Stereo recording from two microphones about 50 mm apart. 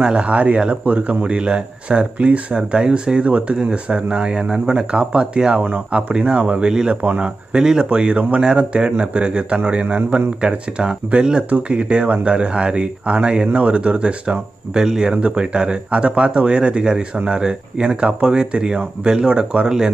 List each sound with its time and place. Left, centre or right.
0.0 s speech: centre
6.7 s speech: centre
7.0 s speech: right
7.5 s speech: centre